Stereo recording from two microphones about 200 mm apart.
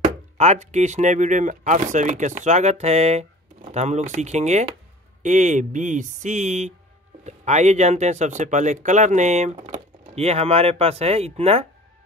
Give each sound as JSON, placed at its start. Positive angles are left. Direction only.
{"t": 0.0, "sound": "speech", "side_deg": -35}